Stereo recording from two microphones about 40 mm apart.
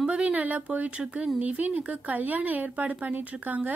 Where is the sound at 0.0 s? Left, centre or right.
Right.